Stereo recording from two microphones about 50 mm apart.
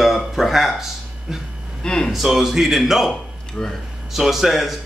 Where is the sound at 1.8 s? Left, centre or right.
Centre.